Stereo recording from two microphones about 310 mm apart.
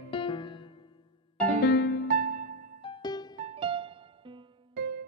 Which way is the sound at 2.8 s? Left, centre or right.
Centre.